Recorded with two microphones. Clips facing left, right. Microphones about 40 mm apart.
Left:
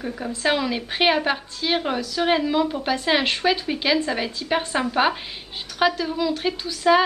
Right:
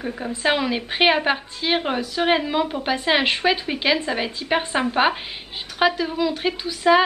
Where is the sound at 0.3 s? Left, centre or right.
Centre.